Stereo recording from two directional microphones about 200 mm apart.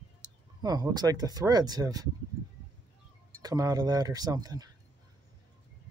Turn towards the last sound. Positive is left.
turn(degrees=-20)  # may be behind; listen again after turning